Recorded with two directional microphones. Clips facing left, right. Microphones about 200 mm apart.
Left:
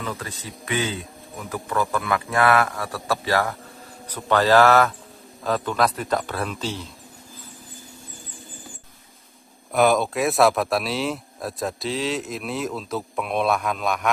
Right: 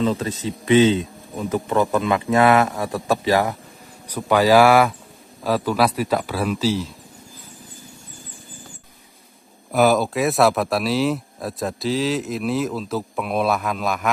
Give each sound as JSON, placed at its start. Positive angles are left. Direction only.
{"t": 0.0, "sound": "speech", "side_deg": -25}
{"t": 9.7, "sound": "speech", "side_deg": 0}